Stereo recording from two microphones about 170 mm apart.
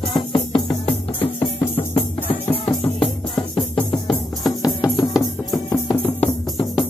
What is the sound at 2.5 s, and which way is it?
Music, 30° left (ahead or behind).